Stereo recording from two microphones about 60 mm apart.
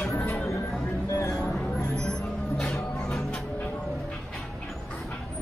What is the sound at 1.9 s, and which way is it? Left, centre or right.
Music, centre.